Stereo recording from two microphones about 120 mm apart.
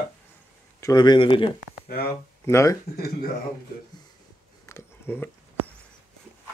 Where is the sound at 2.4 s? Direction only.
25° left (ahead or behind).